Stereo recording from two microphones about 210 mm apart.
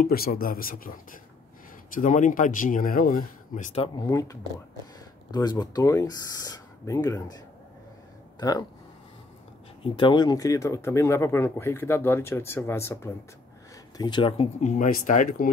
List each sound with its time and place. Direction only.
0.0 s speech: 45° left (ahead or behind); by 4.0 s 25° left (ahead or behind)
4.1 s speech: 15° left (ahead or behind)
9.8 s speech: 25° left (ahead or behind); by 15.5 s 40° left (ahead or behind)